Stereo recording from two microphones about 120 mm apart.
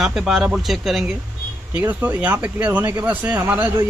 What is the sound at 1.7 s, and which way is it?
Speech, 15° right (ahead or behind).